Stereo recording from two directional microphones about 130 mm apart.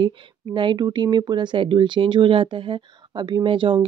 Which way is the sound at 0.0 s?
40° right (ahead or behind).